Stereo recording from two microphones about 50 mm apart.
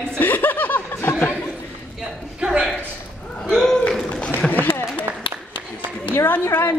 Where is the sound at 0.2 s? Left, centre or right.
Left.